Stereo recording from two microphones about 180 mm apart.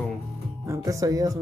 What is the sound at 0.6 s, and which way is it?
Music, 20° right (ahead or behind).